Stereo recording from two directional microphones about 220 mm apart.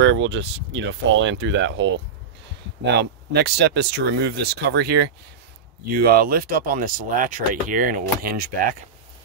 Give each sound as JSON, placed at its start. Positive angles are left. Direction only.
{"t": 0.0, "sound": "speech", "side_deg": -55}